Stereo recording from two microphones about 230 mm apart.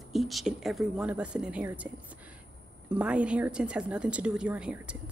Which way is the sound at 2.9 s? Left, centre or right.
Centre.